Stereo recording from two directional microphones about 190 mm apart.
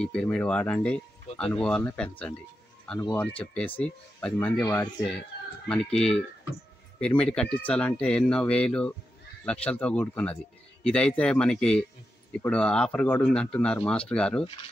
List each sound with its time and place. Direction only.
0.0 s speech: 5° left (ahead or behind)